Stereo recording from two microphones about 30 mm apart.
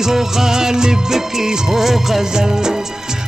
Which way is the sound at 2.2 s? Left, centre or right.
Right.